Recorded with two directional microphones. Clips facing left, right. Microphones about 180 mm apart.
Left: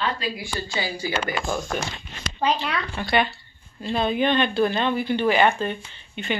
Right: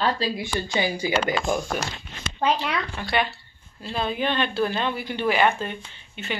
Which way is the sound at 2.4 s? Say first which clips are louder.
Even; 5° right (ahead or behind).